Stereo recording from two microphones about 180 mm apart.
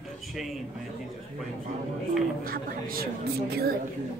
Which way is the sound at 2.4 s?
55° right (ahead or behind).